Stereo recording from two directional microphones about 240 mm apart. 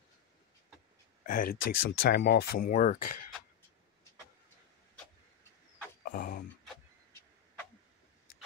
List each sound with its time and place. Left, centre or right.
1.2 s speech: left
1.6 s speech: left
2.0 s speech: left
6.0 s a sound: left